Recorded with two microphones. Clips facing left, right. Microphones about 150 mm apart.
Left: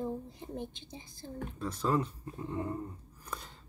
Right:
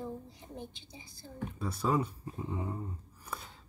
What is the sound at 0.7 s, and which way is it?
Speech, 50° left (ahead or behind).